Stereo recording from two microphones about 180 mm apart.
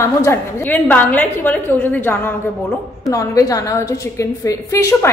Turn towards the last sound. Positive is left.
turn(degrees=15)  # may be behind; listen again after turning